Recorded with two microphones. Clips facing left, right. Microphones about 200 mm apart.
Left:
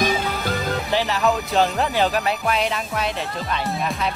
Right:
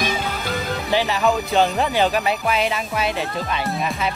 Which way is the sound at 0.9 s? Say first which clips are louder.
Right 2 dB; centre (ahead or behind).